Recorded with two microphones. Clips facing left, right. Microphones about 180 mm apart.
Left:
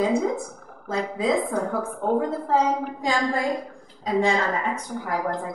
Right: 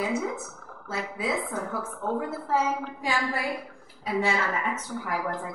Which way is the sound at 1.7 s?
50° left (ahead or behind).